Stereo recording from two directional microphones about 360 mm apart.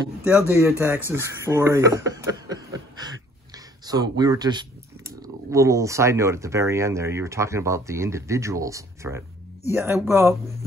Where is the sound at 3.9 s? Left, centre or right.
Centre.